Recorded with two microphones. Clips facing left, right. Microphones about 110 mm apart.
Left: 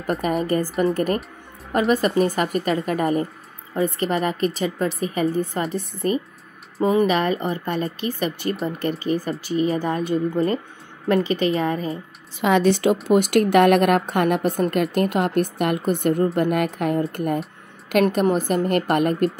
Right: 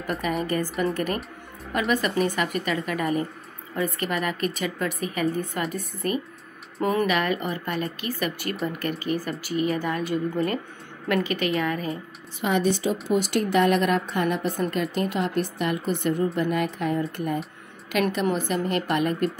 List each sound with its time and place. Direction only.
0.0 s speech: 40° left (ahead or behind); by 7.1 s 20° left (ahead or behind)
7.1 s speech: 30° left (ahead or behind)
12.4 s a woman's voice: 90° left
13.1 s a woman's voice: 65° left (ahead or behind)
18.1 s a woman's voice: 40° left (ahead or behind)